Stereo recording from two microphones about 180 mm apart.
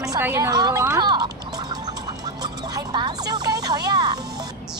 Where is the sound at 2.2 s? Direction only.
20° right (ahead or behind).